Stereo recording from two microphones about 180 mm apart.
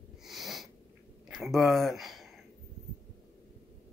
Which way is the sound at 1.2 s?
Centre (ahead or behind).